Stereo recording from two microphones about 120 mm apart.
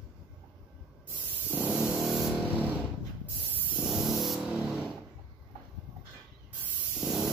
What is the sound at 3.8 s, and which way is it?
Spray, 5° right (ahead or behind).